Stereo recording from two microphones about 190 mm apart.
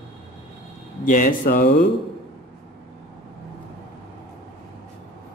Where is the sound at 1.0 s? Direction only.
45° left (ahead or behind).